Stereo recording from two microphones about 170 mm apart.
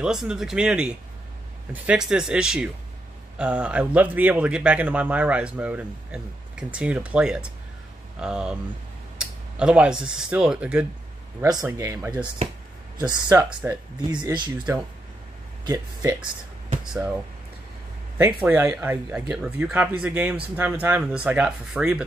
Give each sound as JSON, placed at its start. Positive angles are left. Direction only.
{"t": 0.0, "sound": "a man's voice", "side_deg": -5}
{"t": 14.2, "sound": "speech", "side_deg": -25}
{"t": 15.6, "sound": "speech", "side_deg": -20}
{"t": 16.9, "sound": "speech", "side_deg": -5}
{"t": 18.4, "sound": "a man's voice", "side_deg": -10}